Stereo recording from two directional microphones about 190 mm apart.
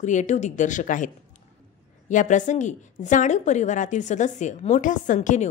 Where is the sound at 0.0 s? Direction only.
40° left (ahead or behind).